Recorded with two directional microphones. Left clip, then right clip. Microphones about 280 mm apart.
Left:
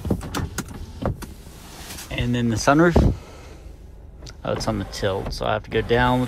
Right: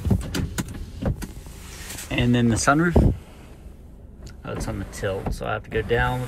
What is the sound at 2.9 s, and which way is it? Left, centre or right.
Speech, right.